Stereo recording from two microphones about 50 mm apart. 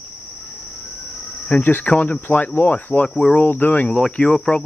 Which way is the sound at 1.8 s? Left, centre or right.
Left.